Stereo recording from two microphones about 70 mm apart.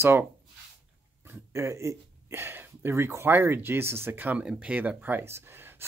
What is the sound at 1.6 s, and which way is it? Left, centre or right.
Speech, right.